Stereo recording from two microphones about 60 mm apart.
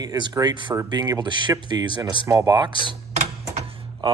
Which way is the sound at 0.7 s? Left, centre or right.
Right.